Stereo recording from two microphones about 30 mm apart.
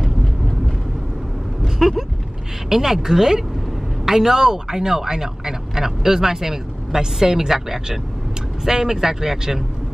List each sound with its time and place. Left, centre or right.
1.8 s speech: centre